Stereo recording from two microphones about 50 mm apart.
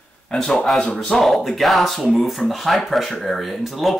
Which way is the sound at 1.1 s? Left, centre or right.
Centre.